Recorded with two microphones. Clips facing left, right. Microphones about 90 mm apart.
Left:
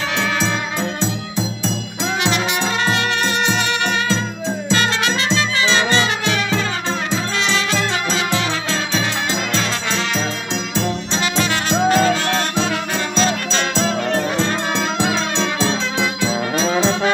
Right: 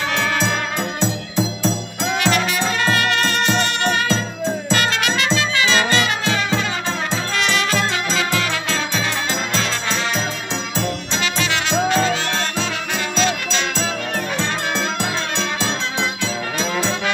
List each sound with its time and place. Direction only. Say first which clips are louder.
2.2 s music: right 1 dB; 25° left (ahead or behind)
4.6 s music: left 3 dB; 30° left (ahead or behind)
6.2 s music: left 1 dB; 30° right (ahead or behind)
8.1 s music: left 1 dB; 25° left (ahead or behind)
11.3 s music: left 2 dB; 35° left (ahead or behind)
13.2 s music: left 1 dB; 35° left (ahead or behind)
16.5 s brass instrument: left 5 dB; 30° left (ahead or behind)